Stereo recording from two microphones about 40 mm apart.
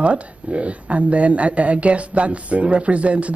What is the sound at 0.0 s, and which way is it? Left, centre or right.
Speech, right.